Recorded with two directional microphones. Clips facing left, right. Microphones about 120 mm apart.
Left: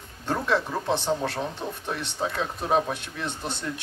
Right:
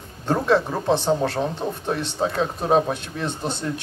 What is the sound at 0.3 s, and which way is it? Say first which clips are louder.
Speech: right 6 dB; 30° right (ahead or behind).